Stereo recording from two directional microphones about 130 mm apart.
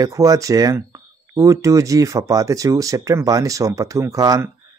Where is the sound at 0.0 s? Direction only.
25° right (ahead or behind).